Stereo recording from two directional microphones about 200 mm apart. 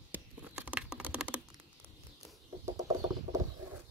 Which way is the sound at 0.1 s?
5° right (ahead or behind).